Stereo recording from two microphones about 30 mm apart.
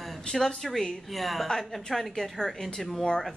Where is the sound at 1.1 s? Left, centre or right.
Centre.